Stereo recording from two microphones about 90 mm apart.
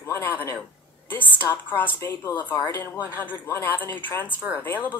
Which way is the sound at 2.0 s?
35° left (ahead or behind).